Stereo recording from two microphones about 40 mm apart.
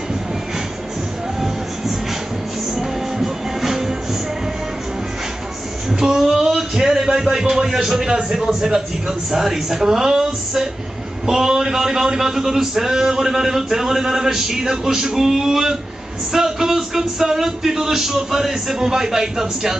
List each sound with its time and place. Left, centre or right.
2.7 s music: centre
5.9 s a sound: centre
8.3 s a man's voice: centre